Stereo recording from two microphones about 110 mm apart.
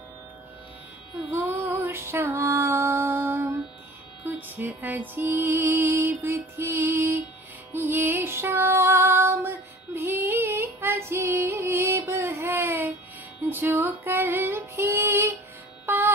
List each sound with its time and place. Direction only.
1.3 s music: 20° right (ahead or behind)
13.5 s female singing: 15° right (ahead or behind)
15.8 s music: 25° right (ahead or behind)